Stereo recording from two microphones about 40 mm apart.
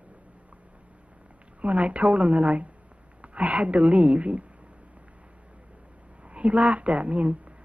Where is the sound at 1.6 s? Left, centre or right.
Right.